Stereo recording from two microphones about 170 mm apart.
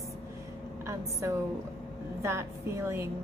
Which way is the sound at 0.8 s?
15° right (ahead or behind).